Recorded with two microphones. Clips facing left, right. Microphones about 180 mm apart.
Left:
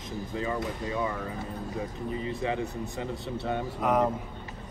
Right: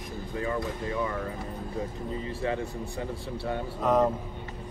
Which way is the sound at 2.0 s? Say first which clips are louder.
Left 1 dB; 20° left (ahead or behind).